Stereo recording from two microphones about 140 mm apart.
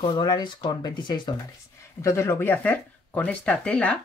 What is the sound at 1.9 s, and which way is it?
Speech, 20° left (ahead or behind).